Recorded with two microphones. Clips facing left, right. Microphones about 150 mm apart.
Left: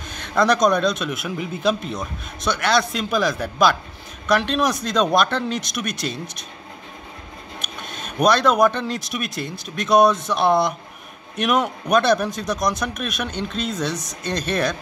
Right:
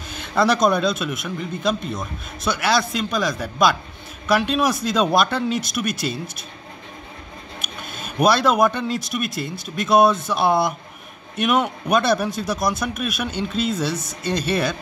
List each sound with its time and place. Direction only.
0.1 s speech: 5° right (ahead or behind)
7.6 s speech: 5° right (ahead or behind)